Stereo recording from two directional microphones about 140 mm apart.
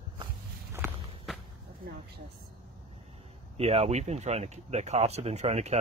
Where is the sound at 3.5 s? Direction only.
45° right (ahead or behind).